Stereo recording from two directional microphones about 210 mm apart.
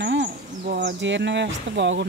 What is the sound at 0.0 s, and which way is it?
Speech, 55° right (ahead or behind).